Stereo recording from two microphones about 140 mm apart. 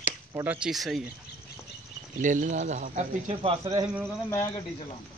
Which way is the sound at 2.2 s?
65° right (ahead or behind).